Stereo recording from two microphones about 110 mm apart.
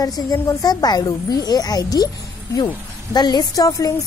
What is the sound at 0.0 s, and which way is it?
Speech, 35° left (ahead or behind).